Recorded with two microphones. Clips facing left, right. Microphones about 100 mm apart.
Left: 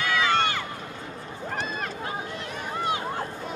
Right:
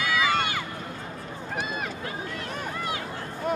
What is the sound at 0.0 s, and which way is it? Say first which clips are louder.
Run: left 1 dB; 10° right (ahead or behind).